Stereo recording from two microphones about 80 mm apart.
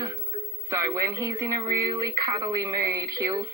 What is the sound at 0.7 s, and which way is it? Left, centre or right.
Speech, right.